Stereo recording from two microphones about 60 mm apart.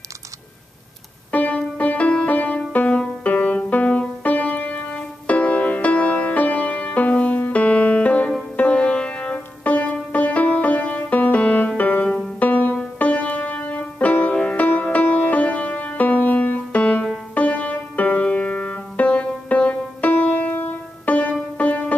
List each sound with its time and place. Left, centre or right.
1.3 s music: left
16.8 s music: centre